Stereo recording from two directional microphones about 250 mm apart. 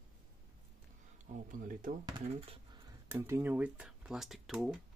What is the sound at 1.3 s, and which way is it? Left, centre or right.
Speech, right.